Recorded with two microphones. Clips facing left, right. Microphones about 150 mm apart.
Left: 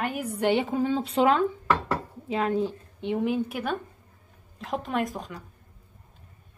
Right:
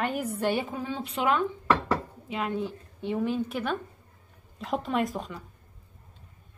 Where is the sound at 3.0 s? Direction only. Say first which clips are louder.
Left 2 dB; 15° left (ahead or behind); by 5.3 s centre (ahead or behind).